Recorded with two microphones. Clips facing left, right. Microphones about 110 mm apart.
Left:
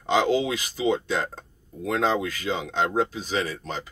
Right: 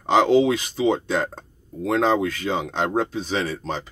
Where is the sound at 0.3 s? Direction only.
30° right (ahead or behind).